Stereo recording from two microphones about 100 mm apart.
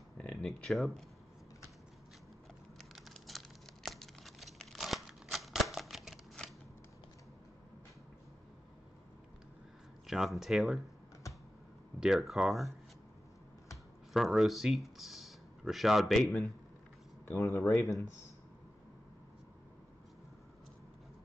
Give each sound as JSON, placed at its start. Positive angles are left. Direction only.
{"t": 0.2, "sound": "speech", "side_deg": 10}
{"t": 2.8, "sound": "a sound", "side_deg": 0}
{"t": 10.0, "sound": "speech", "side_deg": 0}
{"t": 12.0, "sound": "speech", "side_deg": -5}
{"t": 14.1, "sound": "speech", "side_deg": 0}
{"t": 17.4, "sound": "speech", "side_deg": 30}